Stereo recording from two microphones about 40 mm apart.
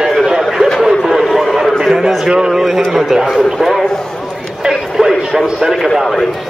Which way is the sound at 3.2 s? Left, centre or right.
Centre.